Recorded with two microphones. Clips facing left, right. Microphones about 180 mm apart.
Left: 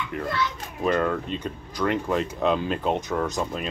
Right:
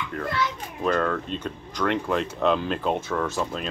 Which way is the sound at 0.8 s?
10° left (ahead or behind).